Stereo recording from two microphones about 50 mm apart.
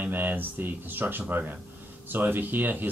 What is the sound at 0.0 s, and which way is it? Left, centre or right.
Speech, right.